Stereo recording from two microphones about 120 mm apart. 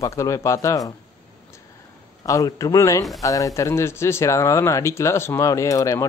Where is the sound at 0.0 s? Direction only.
25° left (ahead or behind).